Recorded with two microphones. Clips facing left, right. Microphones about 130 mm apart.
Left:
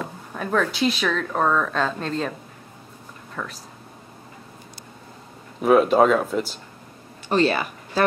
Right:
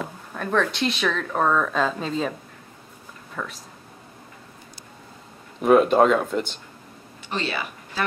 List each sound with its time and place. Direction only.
0.3 s a woman's voice: 5° left (ahead or behind)
3.4 s a woman's voice: centre (ahead or behind)
5.6 s a woman's voice: centre (ahead or behind)
7.2 s speech: 45° left (ahead or behind)